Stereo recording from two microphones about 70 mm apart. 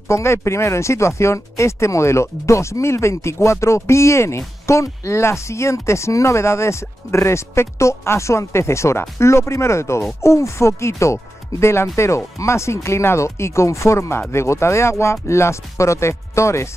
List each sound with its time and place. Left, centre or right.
0.1 s speech: left